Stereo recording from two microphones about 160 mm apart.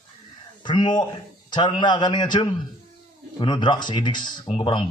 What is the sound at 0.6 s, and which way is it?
Speech, 30° left (ahead or behind).